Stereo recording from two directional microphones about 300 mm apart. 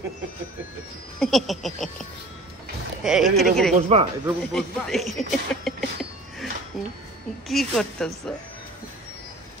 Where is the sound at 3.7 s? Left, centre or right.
Centre.